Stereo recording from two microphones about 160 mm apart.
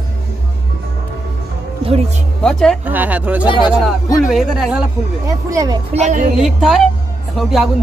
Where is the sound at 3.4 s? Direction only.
30° left (ahead or behind).